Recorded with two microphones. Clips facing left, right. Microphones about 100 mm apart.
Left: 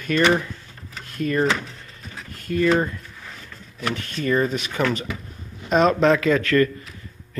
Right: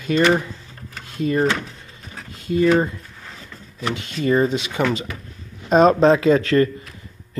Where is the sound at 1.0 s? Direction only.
20° right (ahead or behind).